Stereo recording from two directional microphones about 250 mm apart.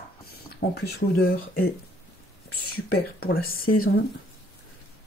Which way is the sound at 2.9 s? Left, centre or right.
Left.